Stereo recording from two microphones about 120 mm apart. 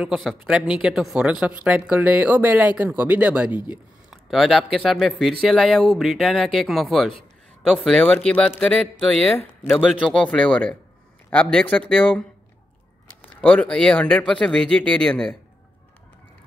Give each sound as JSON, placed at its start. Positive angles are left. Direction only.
{"t": 0.0, "sound": "speech", "side_deg": 0}
{"t": 9.4, "sound": "speech", "side_deg": 15}
{"t": 9.7, "sound": "speech", "side_deg": 0}